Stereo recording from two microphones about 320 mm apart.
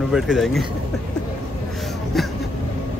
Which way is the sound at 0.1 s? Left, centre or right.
Centre.